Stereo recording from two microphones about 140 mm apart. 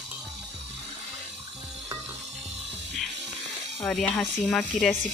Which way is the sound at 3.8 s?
5° left (ahead or behind).